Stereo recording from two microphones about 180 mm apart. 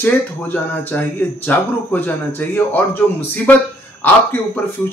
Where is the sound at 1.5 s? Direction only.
10° left (ahead or behind).